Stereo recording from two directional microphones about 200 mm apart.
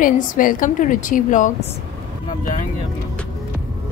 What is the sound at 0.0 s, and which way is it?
A woman's voice, 45° left (ahead or behind).